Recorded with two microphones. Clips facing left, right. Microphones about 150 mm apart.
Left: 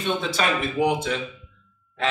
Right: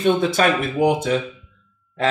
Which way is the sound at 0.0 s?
50° right (ahead or behind).